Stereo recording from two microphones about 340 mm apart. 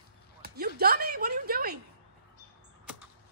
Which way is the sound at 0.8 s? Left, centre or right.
Right.